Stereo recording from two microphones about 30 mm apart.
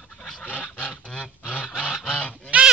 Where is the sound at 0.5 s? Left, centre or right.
Left.